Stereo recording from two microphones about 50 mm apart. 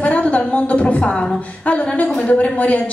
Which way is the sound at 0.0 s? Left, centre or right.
Left.